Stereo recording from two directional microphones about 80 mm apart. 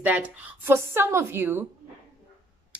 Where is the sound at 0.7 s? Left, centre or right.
Right.